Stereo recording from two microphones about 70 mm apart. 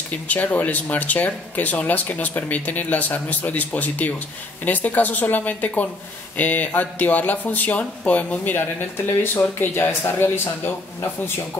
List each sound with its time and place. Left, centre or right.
0.1 s speech: left
8.5 s speech: left